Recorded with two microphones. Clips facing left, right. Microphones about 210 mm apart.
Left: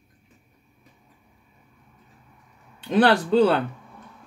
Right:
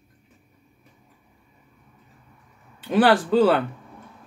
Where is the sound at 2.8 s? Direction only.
5° right (ahead or behind).